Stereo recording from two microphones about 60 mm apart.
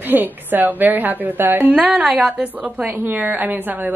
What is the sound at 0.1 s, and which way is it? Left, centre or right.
A woman's voice, right.